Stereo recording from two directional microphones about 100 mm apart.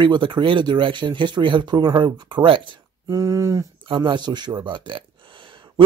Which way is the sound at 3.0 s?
35° right (ahead or behind).